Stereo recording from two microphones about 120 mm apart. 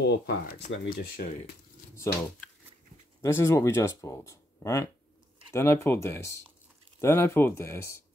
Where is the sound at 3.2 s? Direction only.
25° left (ahead or behind).